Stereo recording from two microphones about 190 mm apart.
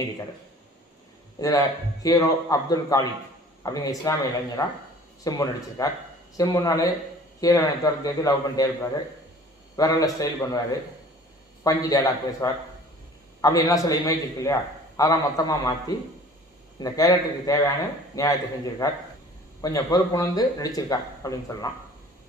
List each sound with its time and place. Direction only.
1.4 s speech: 20° left (ahead or behind)
11.6 s a man's voice: 20° left (ahead or behind)
16.8 s a man's voice: 20° left (ahead or behind)